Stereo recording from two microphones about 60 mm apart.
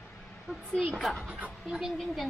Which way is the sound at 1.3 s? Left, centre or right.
Right.